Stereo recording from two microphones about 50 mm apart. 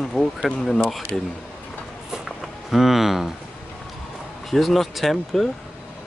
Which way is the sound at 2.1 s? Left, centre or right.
Centre.